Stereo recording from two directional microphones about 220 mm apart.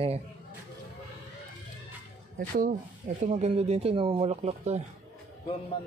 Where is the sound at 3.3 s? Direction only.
30° right (ahead or behind).